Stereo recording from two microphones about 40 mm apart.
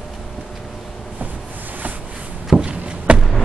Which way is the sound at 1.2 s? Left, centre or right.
Right.